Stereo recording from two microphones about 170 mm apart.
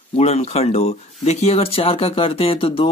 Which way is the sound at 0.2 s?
40° left (ahead or behind).